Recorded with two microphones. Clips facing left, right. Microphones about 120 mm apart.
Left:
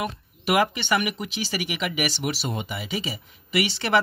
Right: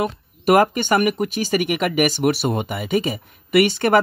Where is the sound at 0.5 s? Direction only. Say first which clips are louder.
Right 7 dB; 45° right (ahead or behind).